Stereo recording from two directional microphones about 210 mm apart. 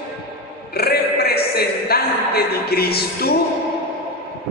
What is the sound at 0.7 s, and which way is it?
A man's voice, 50° left (ahead or behind).